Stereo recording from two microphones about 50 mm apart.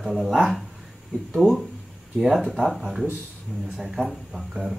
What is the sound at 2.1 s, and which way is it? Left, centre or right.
Speech, centre.